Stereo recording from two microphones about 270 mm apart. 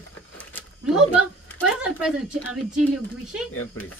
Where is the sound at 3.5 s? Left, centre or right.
Left.